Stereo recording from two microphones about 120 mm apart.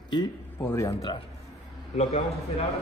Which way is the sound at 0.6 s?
25° left (ahead or behind).